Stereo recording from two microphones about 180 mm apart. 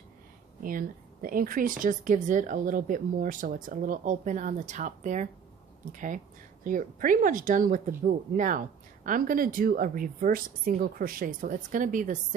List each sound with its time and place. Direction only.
0.6 s speech: 50° right (ahead or behind)